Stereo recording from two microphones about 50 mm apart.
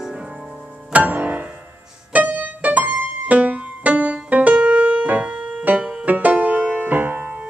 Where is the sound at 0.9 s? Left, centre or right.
Right.